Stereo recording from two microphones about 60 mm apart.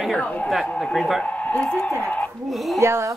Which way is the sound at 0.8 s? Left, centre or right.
Centre.